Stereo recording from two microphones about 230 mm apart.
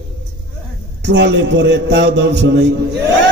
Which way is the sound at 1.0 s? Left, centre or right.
Right.